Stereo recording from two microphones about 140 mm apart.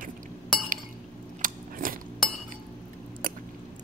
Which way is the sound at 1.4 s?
85° right.